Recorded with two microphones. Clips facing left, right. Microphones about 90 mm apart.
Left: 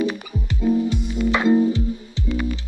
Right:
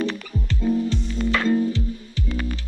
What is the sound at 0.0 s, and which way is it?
Music, 10° left (ahead or behind).